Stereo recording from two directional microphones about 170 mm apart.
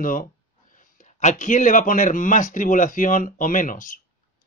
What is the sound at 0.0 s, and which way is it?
Speech, 55° left (ahead or behind).